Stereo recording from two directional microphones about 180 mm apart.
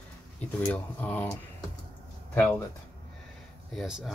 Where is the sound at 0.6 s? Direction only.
10° left (ahead or behind).